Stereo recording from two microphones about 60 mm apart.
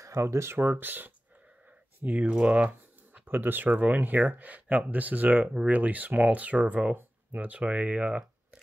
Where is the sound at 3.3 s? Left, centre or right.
Right.